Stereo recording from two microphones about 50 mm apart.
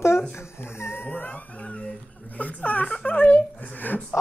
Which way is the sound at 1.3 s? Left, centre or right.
Left.